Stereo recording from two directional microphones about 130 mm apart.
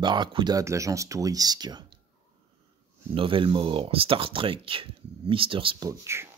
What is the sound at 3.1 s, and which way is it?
Speech, 40° right (ahead or behind).